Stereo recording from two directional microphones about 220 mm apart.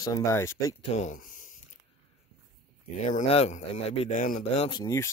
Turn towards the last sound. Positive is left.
turn(degrees=15)  # may be behind; listen again after turning